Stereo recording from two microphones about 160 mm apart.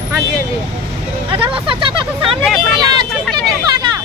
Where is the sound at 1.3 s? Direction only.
35° right (ahead or behind).